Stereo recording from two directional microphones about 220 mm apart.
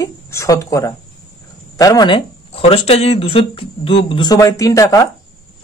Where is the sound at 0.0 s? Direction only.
15° left (ahead or behind).